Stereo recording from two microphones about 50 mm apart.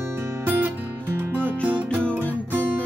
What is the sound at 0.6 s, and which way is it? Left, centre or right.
Music, right.